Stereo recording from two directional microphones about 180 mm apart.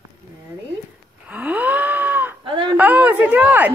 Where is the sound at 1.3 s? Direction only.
10° right (ahead or behind).